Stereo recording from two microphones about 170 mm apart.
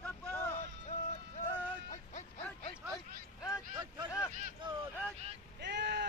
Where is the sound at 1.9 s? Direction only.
45° left (ahead or behind).